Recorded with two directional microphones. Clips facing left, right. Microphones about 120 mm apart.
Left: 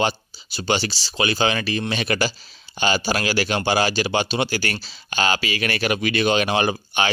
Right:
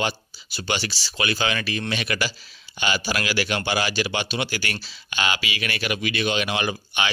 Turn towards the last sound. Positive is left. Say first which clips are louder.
# left 4 dB
turn(degrees=35)  # may be behind; listen again after turning